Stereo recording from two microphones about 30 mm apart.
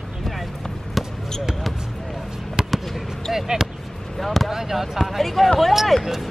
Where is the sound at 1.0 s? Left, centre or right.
Centre.